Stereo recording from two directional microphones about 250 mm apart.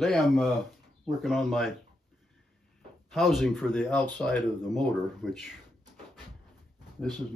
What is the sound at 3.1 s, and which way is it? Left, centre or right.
Speech, centre.